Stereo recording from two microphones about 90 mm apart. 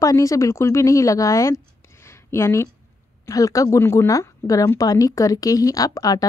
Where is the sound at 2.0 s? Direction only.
30° left (ahead or behind).